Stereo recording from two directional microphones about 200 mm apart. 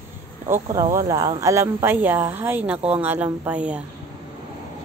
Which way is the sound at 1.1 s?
20° right (ahead or behind).